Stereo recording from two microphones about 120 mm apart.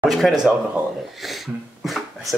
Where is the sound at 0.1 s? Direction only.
Centre (ahead or behind).